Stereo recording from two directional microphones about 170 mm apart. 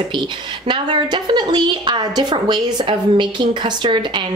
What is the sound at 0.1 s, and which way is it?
Speech, 30° right (ahead or behind).